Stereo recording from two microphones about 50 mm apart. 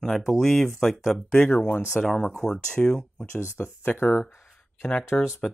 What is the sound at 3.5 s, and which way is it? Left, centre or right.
Speech, left.